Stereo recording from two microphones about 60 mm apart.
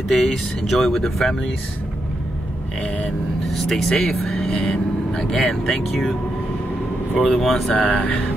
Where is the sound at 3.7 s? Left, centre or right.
Centre.